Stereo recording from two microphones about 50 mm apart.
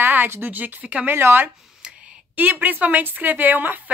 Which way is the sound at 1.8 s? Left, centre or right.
Centre.